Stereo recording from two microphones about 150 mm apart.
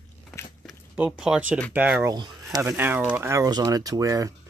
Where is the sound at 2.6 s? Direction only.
15° right (ahead or behind).